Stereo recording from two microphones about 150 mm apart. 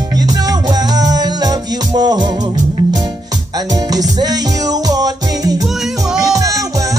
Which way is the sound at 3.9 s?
25° right (ahead or behind).